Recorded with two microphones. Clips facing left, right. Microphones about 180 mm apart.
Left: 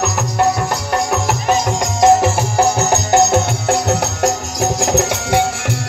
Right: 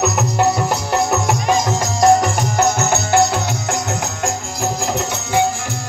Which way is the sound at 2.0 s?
20° left (ahead or behind).